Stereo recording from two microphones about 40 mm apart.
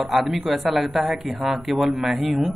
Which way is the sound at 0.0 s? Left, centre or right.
Centre.